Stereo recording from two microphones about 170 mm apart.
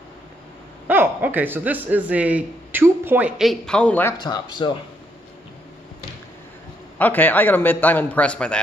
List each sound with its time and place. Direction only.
0.8 s speech: 10° right (ahead or behind); by 4.1 s 10° left (ahead or behind)
4.2 s speech: 25° left (ahead or behind)
7.0 s a man's voice: 10° left (ahead or behind)